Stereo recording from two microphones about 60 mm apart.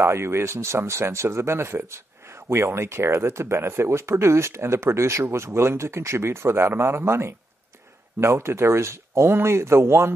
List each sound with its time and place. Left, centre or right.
0.0 s speech: right